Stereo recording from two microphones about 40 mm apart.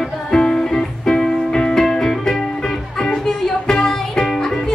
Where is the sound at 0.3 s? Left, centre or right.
Centre.